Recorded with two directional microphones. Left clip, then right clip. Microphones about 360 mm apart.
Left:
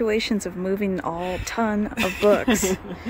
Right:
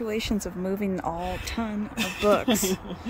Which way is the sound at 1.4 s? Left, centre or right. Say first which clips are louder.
Left 8 dB; centre.